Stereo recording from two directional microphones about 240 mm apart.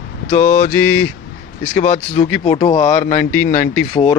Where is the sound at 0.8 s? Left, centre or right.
Centre.